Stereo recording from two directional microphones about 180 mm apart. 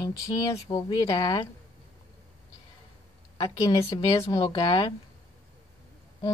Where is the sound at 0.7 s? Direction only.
25° left (ahead or behind).